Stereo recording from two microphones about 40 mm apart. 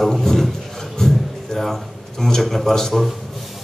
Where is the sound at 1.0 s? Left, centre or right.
Centre.